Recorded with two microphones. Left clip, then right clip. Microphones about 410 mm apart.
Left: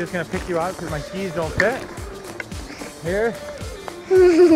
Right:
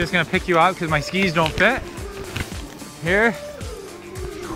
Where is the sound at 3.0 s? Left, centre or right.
Right.